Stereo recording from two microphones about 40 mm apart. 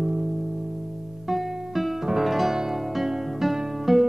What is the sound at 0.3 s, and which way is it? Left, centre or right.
Music, centre.